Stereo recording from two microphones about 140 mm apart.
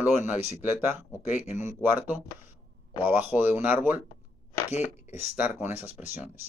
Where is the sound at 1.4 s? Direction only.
60° left (ahead or behind).